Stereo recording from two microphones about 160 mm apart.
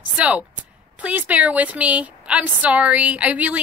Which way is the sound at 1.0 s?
10° right (ahead or behind).